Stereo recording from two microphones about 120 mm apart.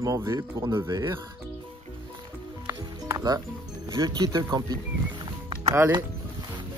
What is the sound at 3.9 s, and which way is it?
Speech, 30° right (ahead or behind).